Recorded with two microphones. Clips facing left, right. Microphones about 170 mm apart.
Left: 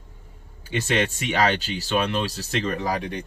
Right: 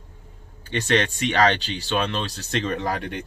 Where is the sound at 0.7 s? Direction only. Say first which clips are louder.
Right 1 dB; 5° left (ahead or behind).